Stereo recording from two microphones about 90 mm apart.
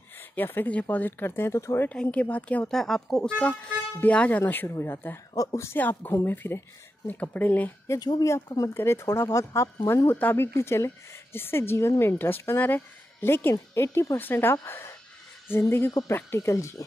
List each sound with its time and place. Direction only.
0.4 s a woman's voice: 20° left (ahead or behind)
1.9 s speech: 15° left (ahead or behind)
2.7 s a woman's voice: 5° left (ahead or behind); by 5.2 s 25° left (ahead or behind)
5.3 s speech: 35° left (ahead or behind)
5.8 s a woman's voice: 20° left (ahead or behind)
8.0 s a woman's voice: 45° left (ahead or behind)